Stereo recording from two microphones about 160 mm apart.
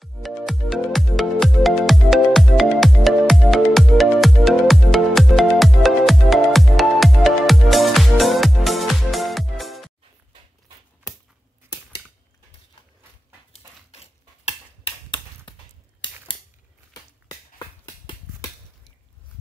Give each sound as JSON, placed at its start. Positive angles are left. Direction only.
{"t": 0.0, "sound": "music", "side_deg": 0}
{"t": 14.4, "sound": "tick-tock", "side_deg": 30}
{"t": 16.9, "sound": "a sound", "side_deg": 25}